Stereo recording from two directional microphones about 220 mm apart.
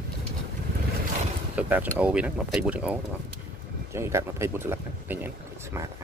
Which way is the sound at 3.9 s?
10° right (ahead or behind).